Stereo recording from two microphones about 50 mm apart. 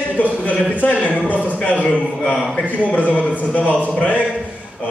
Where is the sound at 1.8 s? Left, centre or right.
Left.